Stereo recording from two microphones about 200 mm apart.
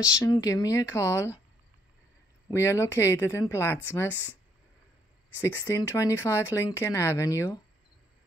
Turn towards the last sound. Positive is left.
turn(degrees=15)  # may be behind; listen again after turning